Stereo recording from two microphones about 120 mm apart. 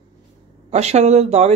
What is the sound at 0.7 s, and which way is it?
Speech, 70° right (ahead or behind).